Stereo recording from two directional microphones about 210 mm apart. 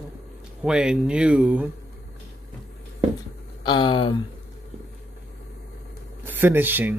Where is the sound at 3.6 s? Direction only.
20° left (ahead or behind).